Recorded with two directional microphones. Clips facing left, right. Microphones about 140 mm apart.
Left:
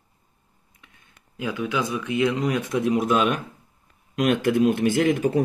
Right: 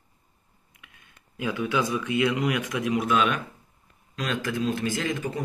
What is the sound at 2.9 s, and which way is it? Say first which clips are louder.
Speech: left 2 dB; 40° left (ahead or behind).